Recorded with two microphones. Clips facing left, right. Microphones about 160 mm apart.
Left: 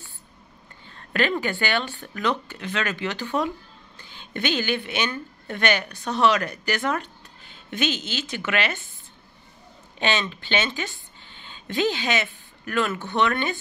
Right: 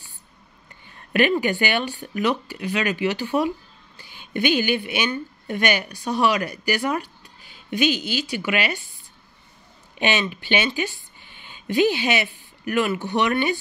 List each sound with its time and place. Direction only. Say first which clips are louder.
0.8 s a woman's voice: right 4 dB; 15° right (ahead or behind)
9.9 s speech: right 2 dB; 15° right (ahead or behind)